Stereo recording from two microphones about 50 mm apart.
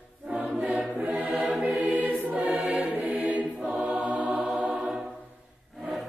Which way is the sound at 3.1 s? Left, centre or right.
Right.